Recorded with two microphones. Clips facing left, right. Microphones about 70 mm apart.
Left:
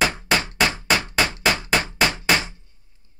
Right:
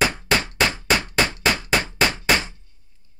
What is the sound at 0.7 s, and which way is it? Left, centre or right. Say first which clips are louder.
Hammer: even; centre.